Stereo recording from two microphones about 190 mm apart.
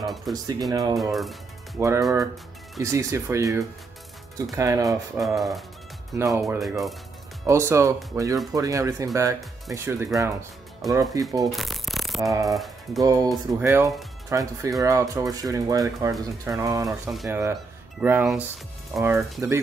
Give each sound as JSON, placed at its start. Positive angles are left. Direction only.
{"t": 0.0, "sound": "music", "side_deg": 0}
{"t": 0.3, "sound": "speech", "side_deg": -20}
{"t": 1.1, "sound": "speech", "side_deg": 0}
{"t": 1.8, "sound": "speech", "side_deg": -15}
{"t": 5.2, "sound": "speech", "side_deg": 0}
{"t": 6.1, "sound": "speech", "side_deg": -15}
{"t": 6.6, "sound": "speech", "side_deg": 0}
{"t": 7.4, "sound": "speech", "side_deg": -15}
{"t": 11.5, "sound": "shuffling cards", "side_deg": 0}
{"t": 12.2, "sound": "speech", "side_deg": -15}
{"t": 12.5, "sound": "speech", "side_deg": 0}
{"t": 13.0, "sound": "speech", "side_deg": -20}